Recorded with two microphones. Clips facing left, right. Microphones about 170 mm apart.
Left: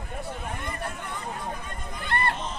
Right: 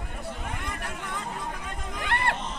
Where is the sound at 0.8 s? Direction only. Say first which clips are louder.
Left 1 dB; 90° right.